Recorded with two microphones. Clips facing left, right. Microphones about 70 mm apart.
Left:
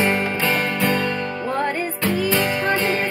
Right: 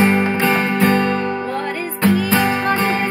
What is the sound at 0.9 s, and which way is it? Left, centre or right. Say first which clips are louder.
Music: right 5 dB; right.